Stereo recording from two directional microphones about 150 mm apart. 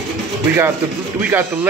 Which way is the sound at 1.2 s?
10° right (ahead or behind).